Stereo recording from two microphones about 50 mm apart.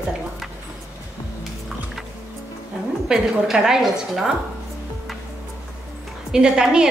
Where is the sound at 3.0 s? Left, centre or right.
Centre.